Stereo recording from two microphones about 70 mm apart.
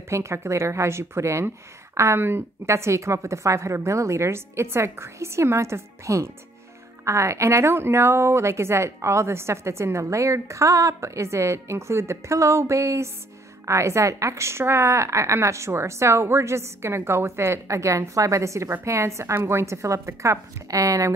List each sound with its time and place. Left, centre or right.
0.1 s a woman's voice: right